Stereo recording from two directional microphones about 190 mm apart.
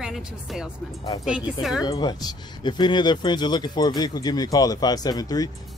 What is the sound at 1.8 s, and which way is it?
Speech, 20° left (ahead or behind).